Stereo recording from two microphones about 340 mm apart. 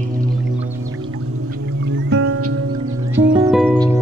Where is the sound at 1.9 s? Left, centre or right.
Right.